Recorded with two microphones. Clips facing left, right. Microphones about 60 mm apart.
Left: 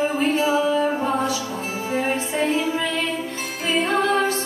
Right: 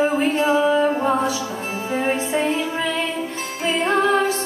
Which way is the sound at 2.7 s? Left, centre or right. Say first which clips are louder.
Even; right.